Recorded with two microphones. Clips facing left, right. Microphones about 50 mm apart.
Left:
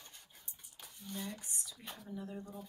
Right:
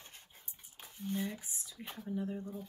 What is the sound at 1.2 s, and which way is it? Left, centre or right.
Speech, centre.